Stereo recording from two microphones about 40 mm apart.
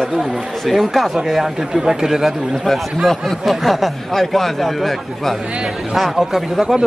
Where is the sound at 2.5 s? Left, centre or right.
Centre.